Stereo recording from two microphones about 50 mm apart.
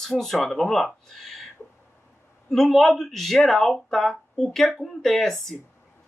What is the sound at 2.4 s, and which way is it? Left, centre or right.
Speech, centre.